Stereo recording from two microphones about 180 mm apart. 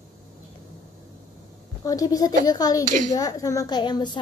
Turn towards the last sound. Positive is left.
turn(degrees=25)  # may be behind; listen again after turning